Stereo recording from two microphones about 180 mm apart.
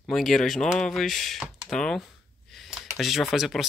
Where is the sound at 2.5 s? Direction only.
Centre (ahead or behind).